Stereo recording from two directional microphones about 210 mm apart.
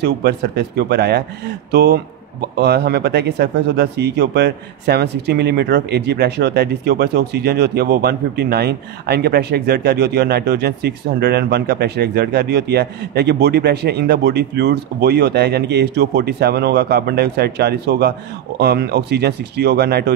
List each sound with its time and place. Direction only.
0.0 s speech: 50° right (ahead or behind)